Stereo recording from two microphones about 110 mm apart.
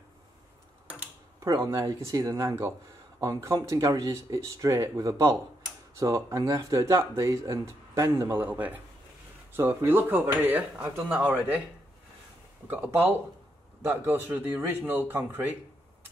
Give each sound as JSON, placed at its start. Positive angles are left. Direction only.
{"t": 1.4, "sound": "a man's voice", "side_deg": -30}
{"t": 12.6, "sound": "a man's voice", "side_deg": -15}